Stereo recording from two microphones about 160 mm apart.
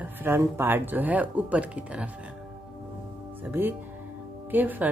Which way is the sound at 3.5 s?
10° right (ahead or behind).